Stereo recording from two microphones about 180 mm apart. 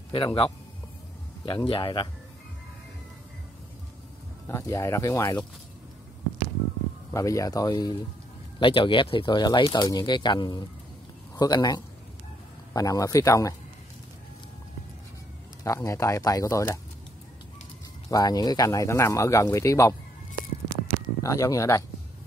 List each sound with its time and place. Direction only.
0.1 s speech: 30° left (ahead or behind)
4.5 s speech: 15° left (ahead or behind)
7.1 s speech: 20° left (ahead or behind)
15.6 s speech: 15° left (ahead or behind)
18.1 s speech: 20° left (ahead or behind)
21.2 s speech: 20° left (ahead or behind)